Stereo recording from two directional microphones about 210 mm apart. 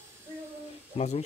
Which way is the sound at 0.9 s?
30° left (ahead or behind).